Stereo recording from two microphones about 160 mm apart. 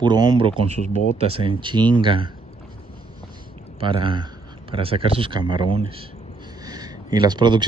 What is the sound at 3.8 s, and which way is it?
Speech, 30° right (ahead or behind).